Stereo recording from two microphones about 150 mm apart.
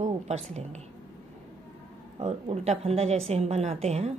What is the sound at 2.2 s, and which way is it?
A woman's voice, 40° right (ahead or behind).